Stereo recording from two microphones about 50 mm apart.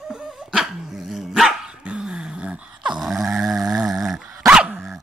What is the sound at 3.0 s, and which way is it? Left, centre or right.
Dog, centre.